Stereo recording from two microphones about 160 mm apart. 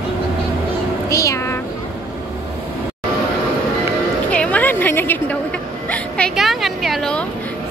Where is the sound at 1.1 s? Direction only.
20° left (ahead or behind).